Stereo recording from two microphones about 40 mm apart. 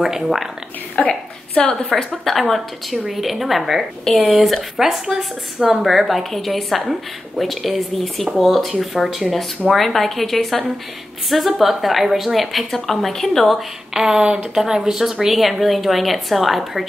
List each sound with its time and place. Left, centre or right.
0.0 s speech: centre
1.0 s a woman's voice: left
2.2 s a woman's voice: centre
4.1 s a woman's voice: centre
4.7 s a woman's voice: centre
13.6 s speech: centre
14.5 s a woman's voice: centre